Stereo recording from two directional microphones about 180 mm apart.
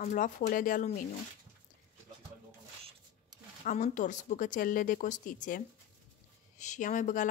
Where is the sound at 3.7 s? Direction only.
45° left (ahead or behind).